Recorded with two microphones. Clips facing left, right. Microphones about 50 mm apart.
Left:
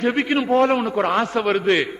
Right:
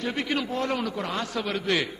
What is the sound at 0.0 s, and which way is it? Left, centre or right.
A man's voice, left.